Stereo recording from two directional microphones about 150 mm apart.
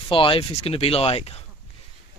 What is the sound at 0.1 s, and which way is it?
Speech, 35° left (ahead or behind).